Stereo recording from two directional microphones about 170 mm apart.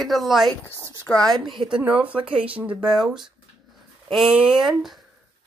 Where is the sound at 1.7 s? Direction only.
10° right (ahead or behind).